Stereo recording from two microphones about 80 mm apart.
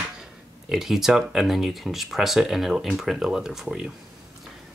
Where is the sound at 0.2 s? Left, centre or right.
Centre.